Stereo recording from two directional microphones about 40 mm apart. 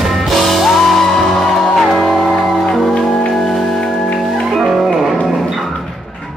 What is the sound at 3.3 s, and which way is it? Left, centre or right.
Music, centre.